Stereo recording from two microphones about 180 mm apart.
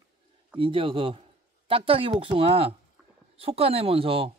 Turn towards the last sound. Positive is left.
turn(degrees=-30)  # may be behind; listen again after turning